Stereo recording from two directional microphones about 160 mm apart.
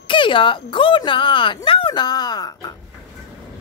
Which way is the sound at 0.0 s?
30° left (ahead or behind).